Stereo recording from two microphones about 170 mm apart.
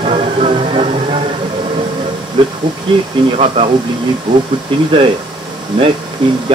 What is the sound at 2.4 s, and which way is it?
Speech, 30° right (ahead or behind).